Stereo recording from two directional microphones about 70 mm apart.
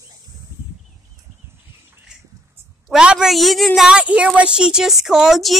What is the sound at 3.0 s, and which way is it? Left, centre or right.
Speech, centre.